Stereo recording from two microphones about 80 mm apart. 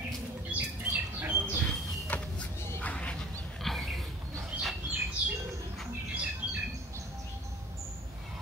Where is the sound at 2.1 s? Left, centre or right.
Centre.